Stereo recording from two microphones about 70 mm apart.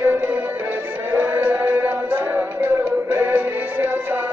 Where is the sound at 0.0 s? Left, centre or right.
Right.